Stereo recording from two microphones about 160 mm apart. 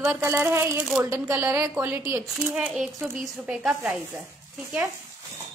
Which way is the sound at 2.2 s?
5° right (ahead or behind).